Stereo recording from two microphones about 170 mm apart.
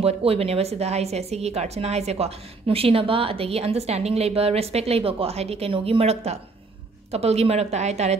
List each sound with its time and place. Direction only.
0.0 s a woman's voice: 35° right (ahead or behind)